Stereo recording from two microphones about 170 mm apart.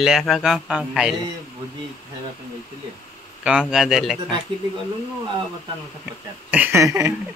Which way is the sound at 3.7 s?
Centre (ahead or behind).